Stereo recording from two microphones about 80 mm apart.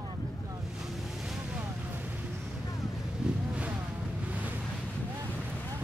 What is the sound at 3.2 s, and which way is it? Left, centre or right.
Vehicle, centre.